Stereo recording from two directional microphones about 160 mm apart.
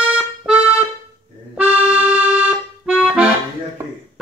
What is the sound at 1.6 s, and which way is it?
Accordion, 5° right (ahead or behind).